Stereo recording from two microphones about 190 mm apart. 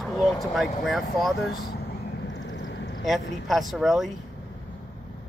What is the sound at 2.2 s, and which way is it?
Vehicle, 70° left (ahead or behind).